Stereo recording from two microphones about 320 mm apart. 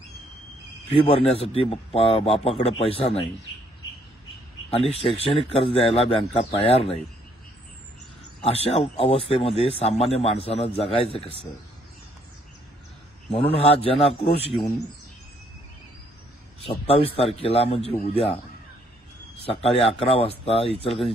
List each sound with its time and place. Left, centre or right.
1.0 s a man's voice: centre
4.6 s a man's voice: centre
8.4 s a man's voice: centre
13.3 s a man's voice: centre
16.8 s a man's voice: centre
19.4 s a man's voice: centre